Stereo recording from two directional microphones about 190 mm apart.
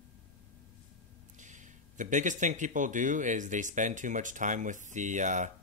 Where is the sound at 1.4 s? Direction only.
40° right (ahead or behind).